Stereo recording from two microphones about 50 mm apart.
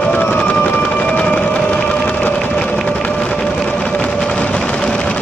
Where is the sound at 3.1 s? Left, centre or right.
Centre.